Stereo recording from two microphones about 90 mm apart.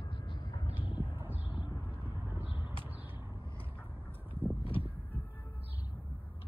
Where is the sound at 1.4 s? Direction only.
65° left (ahead or behind).